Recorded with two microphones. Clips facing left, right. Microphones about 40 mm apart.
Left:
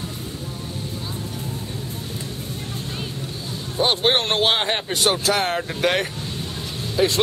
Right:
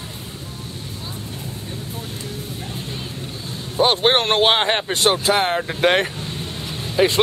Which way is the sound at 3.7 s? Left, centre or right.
Centre.